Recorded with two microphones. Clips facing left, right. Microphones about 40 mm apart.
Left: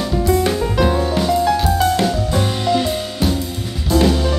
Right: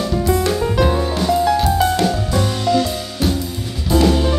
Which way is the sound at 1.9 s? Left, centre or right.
Left.